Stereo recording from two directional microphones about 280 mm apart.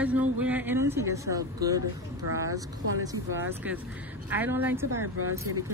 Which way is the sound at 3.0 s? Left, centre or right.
Centre.